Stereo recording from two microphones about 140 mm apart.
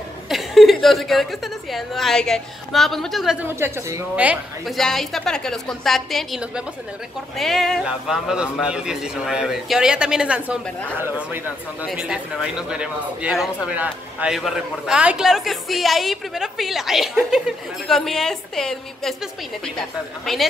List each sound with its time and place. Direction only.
0.3 s a woman's voice: centre (ahead or behind)
3.4 s a woman's voice: 20° right (ahead or behind)
4.7 s a man's voice: centre (ahead or behind)
11.9 s a man's voice: 5° right (ahead or behind)